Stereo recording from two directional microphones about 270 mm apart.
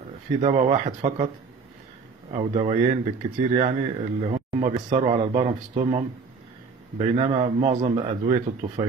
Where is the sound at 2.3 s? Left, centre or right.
Centre.